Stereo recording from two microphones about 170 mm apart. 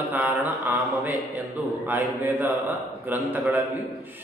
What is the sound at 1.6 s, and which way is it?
A man's voice, 15° right (ahead or behind).